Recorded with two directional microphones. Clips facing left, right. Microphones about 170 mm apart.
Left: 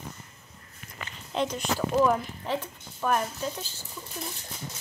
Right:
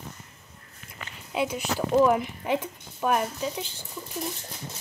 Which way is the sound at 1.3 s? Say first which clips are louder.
Right 1 dB; 5° right (ahead or behind).